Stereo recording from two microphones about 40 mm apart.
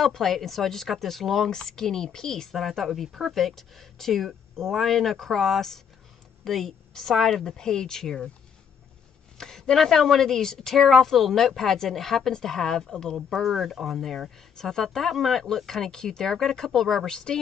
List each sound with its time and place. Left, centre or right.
0.0 s a woman's voice: centre
9.4 s a woman's voice: centre